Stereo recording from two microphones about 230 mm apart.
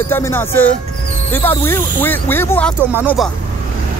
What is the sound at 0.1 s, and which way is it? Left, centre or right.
Speech, centre.